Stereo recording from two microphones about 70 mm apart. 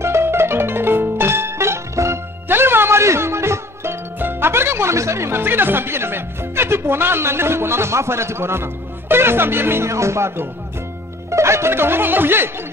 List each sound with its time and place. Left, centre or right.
0.0 s music: right
9.1 s speech: right